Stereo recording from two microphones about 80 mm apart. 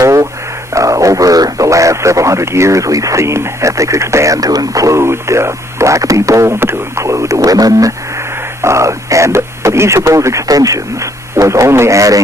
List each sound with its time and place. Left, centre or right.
0.0 s radio: right
0.7 s speech: right
8.6 s speech: right